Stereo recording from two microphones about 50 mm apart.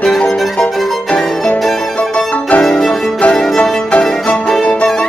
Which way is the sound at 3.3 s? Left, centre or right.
Centre.